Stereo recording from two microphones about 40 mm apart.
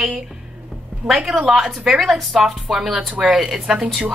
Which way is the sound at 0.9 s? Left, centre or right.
Right.